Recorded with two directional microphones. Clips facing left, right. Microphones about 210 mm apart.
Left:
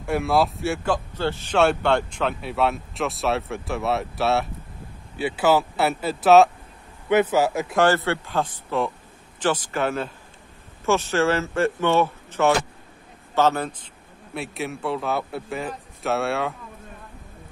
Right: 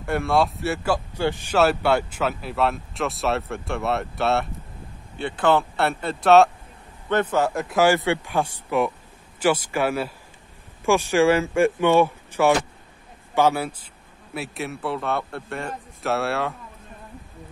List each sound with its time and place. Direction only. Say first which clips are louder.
0.0 s a man's voice: even; centre (ahead or behind)